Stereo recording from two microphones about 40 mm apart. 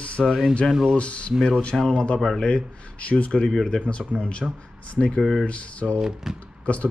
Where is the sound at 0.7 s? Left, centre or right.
Centre.